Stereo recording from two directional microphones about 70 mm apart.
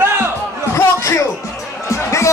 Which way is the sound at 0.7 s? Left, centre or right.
Left.